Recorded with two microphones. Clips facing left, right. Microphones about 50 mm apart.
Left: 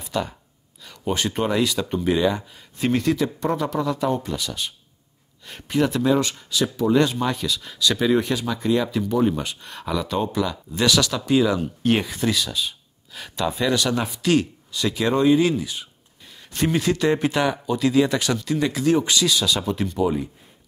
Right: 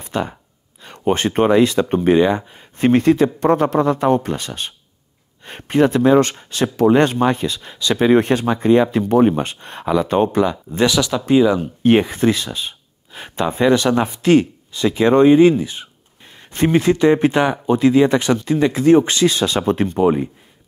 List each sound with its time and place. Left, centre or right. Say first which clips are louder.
0.0 s speech: right 4 dB; right
10.9 s speech: right 1 dB; centre; by 20.2 s right